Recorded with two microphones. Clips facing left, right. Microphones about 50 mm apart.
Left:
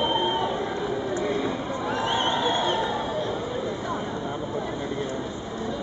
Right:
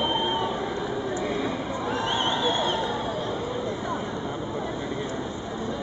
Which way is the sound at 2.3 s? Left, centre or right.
Centre.